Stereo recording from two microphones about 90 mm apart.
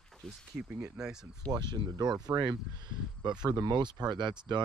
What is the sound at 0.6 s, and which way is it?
Speech, 15° right (ahead or behind).